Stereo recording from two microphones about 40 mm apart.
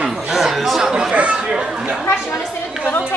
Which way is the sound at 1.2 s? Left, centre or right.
Right.